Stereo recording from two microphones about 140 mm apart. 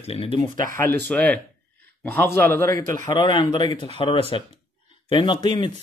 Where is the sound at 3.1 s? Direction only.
35° left (ahead or behind).